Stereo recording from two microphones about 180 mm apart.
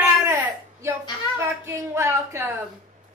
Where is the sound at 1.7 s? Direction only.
15° right (ahead or behind).